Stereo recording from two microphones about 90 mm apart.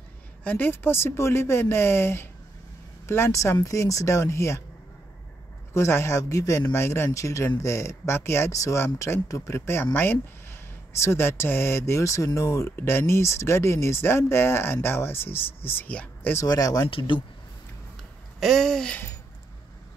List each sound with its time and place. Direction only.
0.4 s speech: 20° left (ahead or behind)
5.7 s speech: 30° left (ahead or behind)
16.4 s speech: 45° left (ahead or behind)
16.8 s speech: 65° left (ahead or behind)
18.4 s speech: 5° left (ahead or behind)